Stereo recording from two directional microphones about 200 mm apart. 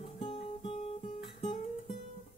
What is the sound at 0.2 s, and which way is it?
Guitar, 25° left (ahead or behind).